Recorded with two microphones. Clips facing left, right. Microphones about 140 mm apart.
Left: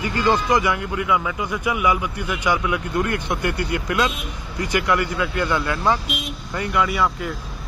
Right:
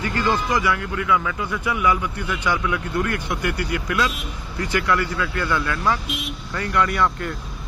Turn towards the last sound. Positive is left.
turn(degrees=5)  # may be behind; listen again after turning